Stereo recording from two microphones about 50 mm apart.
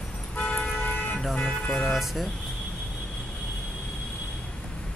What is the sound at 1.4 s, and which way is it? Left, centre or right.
Speech, left.